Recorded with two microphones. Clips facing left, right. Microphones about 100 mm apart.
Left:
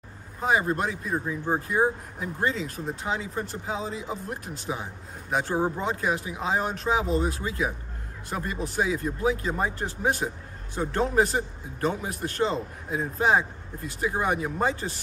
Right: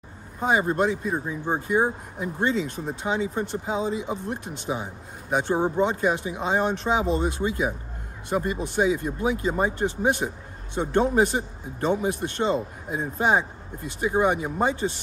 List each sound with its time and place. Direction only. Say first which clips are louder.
0.4 s speech: right 2 dB; 25° right (ahead or behind)
2.7 s speech: right 3 dB; 25° right (ahead or behind)